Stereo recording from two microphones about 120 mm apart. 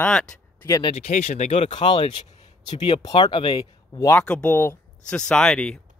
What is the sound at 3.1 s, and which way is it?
Speech, 50° left (ahead or behind).